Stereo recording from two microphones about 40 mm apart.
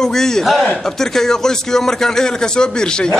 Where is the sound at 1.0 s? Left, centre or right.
Centre.